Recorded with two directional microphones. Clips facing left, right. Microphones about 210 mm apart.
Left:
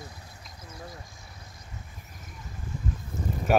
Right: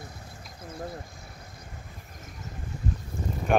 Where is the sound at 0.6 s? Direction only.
55° right (ahead or behind).